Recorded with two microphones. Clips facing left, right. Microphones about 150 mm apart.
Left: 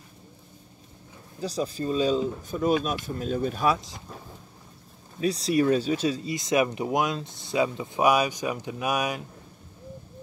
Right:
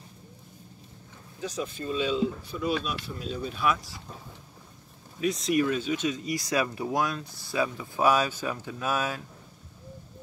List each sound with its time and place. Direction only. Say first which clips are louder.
1.4 s speech: left 4 dB; 35° left (ahead or behind)
3.6 s speech: even; 25° left (ahead or behind)
5.2 s speech: left 2 dB; 35° left (ahead or behind)
6.3 s speech: left 4 dB; 20° left (ahead or behind)